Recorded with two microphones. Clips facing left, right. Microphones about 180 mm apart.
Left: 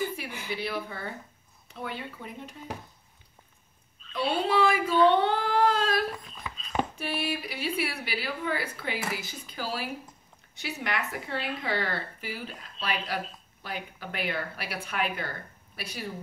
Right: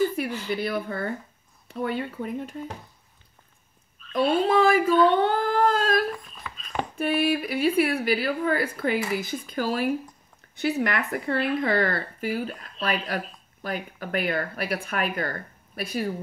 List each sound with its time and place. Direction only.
0.3 s speech: 15° left (ahead or behind)
0.6 s speech: 50° right (ahead or behind)
4.1 s speech: 45° right (ahead or behind)